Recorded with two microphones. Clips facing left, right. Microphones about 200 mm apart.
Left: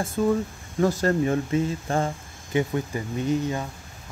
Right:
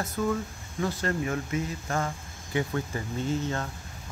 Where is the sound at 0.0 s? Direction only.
30° left (ahead or behind).